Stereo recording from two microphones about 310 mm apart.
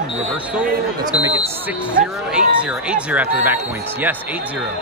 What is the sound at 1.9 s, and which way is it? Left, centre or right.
Speech, centre.